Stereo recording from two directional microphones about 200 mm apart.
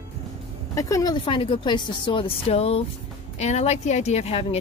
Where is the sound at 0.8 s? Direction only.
15° left (ahead or behind).